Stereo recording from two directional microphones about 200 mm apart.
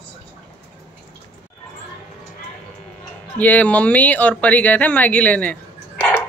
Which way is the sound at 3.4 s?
10° left (ahead or behind).